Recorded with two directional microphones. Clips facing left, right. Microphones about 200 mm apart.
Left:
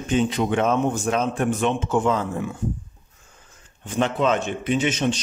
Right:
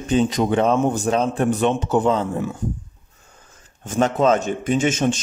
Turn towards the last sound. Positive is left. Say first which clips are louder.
# right 3 dB
turn(degrees=-50)  # may be behind; listen again after turning